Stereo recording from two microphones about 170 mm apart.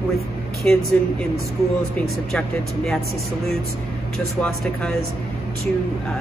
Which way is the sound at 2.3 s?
Centre (ahead or behind).